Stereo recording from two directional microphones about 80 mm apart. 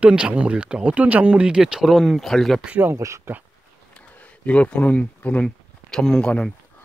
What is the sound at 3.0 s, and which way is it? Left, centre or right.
Speech, right.